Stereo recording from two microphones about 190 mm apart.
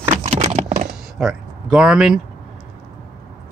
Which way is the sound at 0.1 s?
30° right (ahead or behind).